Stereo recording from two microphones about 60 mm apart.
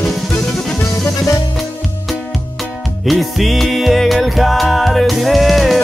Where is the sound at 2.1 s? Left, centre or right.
Centre.